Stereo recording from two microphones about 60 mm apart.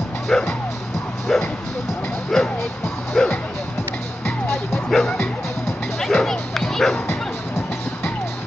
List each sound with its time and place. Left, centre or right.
0.3 s speech: centre
2.3 s music: centre
4.8 s music: centre
6.3 s bow-wow: centre